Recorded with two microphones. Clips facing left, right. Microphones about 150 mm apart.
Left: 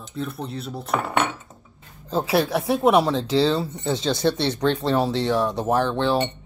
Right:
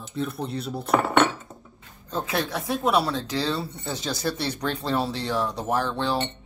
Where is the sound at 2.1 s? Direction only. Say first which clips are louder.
Left 7 dB; 30° left (ahead or behind).